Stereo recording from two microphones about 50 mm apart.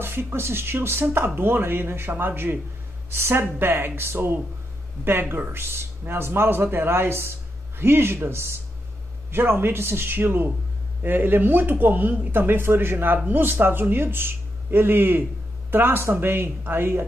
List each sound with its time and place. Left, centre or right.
0.0 s speech: right
3.1 s speech: right
5.5 s speech: right
9.3 s a man's voice: right
12.3 s speech: right